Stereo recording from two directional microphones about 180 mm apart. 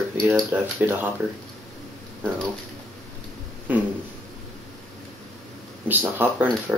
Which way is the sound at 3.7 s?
10° right (ahead or behind).